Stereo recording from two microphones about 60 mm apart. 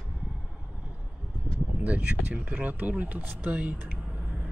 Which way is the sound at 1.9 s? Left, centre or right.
Right.